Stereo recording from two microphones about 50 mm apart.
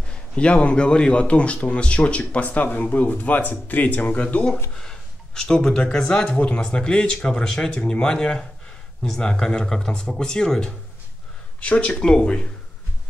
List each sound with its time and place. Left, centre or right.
0.1 s a man's voice: left
4.7 s a sound: centre
5.8 s a man's voice: centre